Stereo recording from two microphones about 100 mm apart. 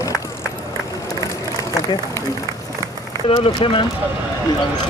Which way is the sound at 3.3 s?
60° left (ahead or behind).